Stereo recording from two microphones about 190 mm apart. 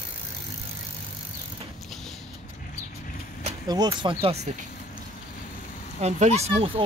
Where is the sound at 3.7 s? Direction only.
20° right (ahead or behind).